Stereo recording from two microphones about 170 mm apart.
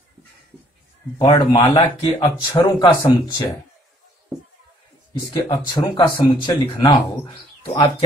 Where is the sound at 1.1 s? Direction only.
25° left (ahead or behind).